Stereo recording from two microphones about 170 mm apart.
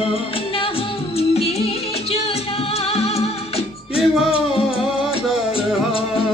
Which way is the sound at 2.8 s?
35° left (ahead or behind).